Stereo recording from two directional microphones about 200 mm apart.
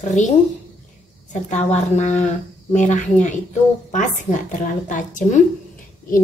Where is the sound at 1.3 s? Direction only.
35° left (ahead or behind).